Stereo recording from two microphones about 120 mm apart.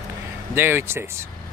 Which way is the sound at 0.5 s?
20° right (ahead or behind).